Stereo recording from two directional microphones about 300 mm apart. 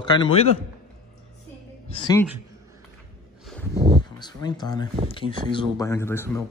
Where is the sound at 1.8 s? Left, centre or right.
Centre.